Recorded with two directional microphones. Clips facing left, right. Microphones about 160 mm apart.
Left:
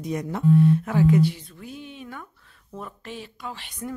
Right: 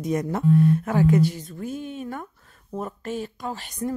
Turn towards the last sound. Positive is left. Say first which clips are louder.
# right 5 dB
turn(degrees=-40)  # may be behind; listen again after turning